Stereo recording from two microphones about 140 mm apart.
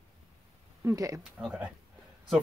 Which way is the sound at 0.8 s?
25° right (ahead or behind).